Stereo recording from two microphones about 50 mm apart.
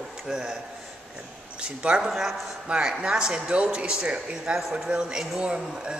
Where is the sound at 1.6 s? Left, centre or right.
Right.